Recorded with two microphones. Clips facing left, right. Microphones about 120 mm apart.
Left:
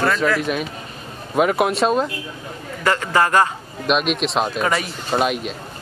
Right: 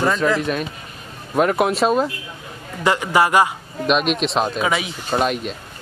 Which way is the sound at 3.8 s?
Centre (ahead or behind).